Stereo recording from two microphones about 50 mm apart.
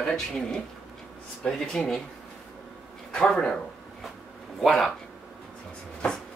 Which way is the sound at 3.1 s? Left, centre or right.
Centre.